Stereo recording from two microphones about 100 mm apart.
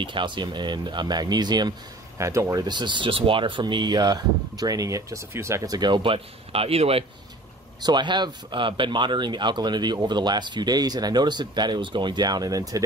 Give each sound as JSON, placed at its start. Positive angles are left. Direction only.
{"t": 0.0, "sound": "speech", "side_deg": -55}
{"t": 2.1, "sound": "speech", "side_deg": -30}
{"t": 2.6, "sound": "speech", "side_deg": -50}
{"t": 5.8, "sound": "speech", "side_deg": -50}
{"t": 7.8, "sound": "speech", "side_deg": -50}